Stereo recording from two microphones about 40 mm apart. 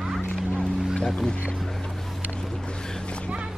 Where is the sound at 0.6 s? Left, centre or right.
Centre.